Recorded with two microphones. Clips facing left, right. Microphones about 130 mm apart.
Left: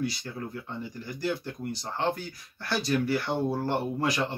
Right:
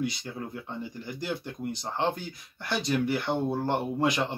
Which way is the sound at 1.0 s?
20° right (ahead or behind).